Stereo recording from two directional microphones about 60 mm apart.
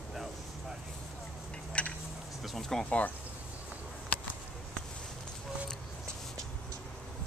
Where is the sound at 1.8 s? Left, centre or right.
Left.